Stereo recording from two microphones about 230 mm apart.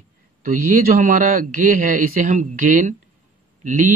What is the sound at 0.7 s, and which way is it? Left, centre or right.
A man's voice, right.